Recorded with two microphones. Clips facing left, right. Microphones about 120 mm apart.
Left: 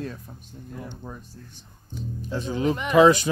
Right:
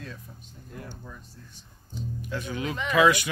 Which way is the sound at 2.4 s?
30° left (ahead or behind).